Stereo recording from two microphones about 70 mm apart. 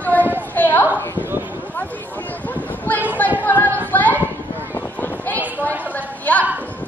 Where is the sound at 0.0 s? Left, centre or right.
Left.